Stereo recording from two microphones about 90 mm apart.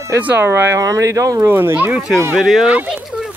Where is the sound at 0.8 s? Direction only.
40° right (ahead or behind).